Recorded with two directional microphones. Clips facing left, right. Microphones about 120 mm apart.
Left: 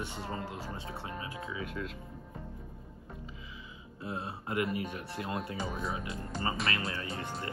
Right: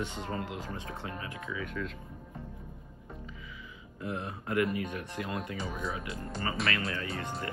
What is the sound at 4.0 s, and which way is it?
Speech, 25° left (ahead or behind).